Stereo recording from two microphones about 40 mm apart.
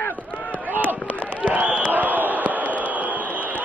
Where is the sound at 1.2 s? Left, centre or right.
Right.